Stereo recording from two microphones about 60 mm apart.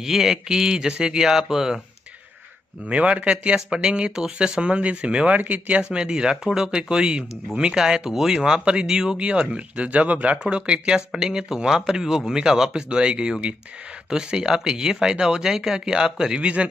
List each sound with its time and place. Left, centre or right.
0.0 s speech: centre
2.9 s speech: right